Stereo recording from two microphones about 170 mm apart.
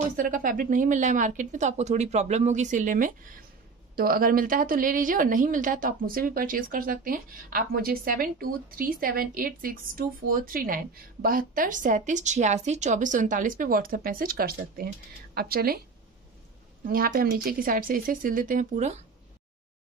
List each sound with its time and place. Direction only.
0.1 s a woman's voice: 50° right (ahead or behind)
16.8 s a woman's voice: 55° right (ahead or behind)